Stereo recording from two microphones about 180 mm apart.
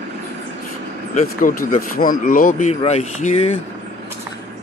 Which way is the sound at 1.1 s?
45° left (ahead or behind).